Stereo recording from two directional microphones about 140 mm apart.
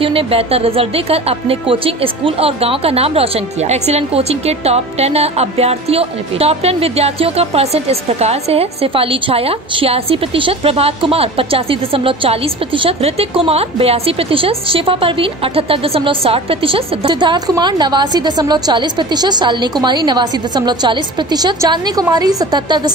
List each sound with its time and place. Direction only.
0.0 s speech: 40° right (ahead or behind)